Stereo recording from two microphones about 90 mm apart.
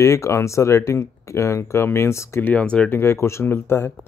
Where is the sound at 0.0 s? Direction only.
35° left (ahead or behind).